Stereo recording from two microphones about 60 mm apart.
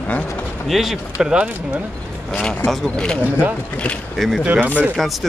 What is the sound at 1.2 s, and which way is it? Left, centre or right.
Speech, centre.